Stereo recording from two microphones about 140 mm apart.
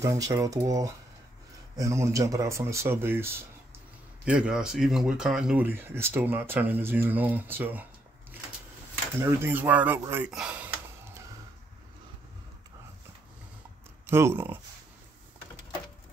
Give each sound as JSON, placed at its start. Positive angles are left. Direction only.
{"t": 0.0, "sound": "speech", "side_deg": -20}
{"t": 4.2, "sound": "speech", "side_deg": -5}
{"t": 9.2, "sound": "speech", "side_deg": -15}
{"t": 14.0, "sound": "speech", "side_deg": -15}